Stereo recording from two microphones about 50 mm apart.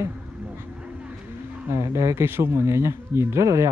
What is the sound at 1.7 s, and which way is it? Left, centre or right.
Speech, right.